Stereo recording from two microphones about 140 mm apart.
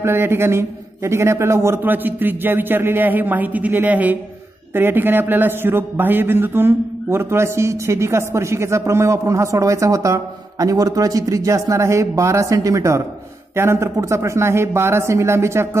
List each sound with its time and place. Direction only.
0.0 s a man's voice: 15° right (ahead or behind)